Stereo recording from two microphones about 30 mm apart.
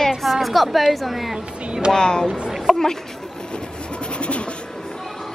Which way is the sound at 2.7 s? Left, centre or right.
Centre.